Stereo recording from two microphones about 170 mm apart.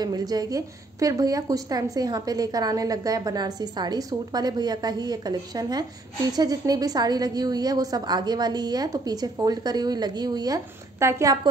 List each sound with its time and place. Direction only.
0.0 s a woman's voice: 20° right (ahead or behind)